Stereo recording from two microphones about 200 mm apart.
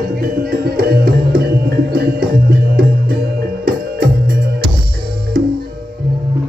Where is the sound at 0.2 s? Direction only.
50° right (ahead or behind).